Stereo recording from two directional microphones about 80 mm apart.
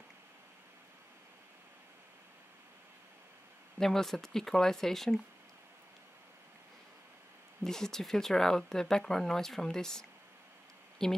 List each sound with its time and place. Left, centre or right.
3.8 s speech: centre
7.6 s speech: centre